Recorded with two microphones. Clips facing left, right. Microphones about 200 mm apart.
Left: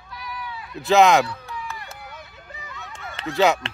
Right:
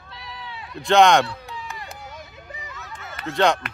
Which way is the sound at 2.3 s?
15° right (ahead or behind).